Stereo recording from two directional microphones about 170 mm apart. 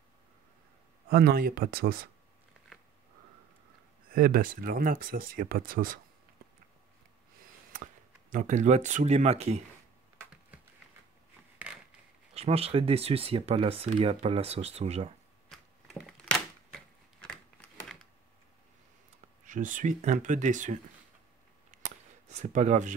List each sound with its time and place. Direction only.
1.1 s speech: 60° right (ahead or behind)
4.1 s speech: 60° right (ahead or behind)
7.7 s speech: 50° right (ahead or behind)
12.4 s speech: 35° right (ahead or behind)
15.5 s a sound: centre (ahead or behind)
19.4 s speech: 50° right (ahead or behind)
22.3 s speech: 45° right (ahead or behind)